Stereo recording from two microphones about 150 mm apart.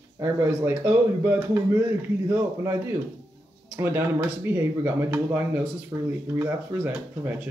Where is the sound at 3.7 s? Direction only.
15° right (ahead or behind).